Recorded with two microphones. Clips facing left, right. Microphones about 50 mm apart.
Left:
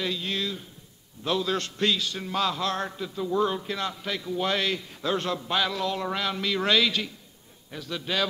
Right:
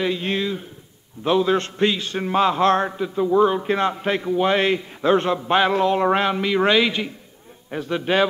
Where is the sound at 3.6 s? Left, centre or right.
Right.